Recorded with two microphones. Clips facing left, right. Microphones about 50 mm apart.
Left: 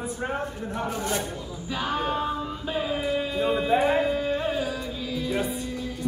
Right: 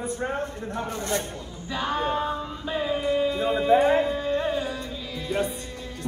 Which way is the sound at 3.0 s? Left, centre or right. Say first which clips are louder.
Right 2 dB; centre.